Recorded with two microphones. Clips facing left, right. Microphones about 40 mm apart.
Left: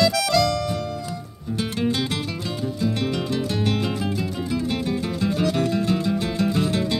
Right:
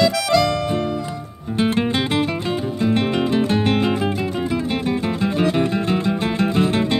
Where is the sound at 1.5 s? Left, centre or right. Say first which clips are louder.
Right 5 dB; right.